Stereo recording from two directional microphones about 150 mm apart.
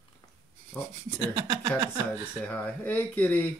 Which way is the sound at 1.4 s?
25° right (ahead or behind).